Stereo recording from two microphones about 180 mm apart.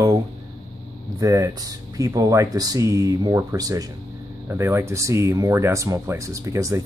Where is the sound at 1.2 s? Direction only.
20° right (ahead or behind).